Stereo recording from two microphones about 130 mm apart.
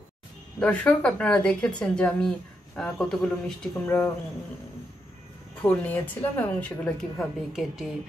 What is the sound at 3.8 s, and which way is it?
Speech, 20° left (ahead or behind).